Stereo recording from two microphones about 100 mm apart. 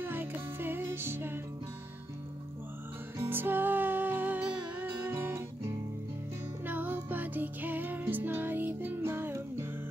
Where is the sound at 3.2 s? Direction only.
20° right (ahead or behind).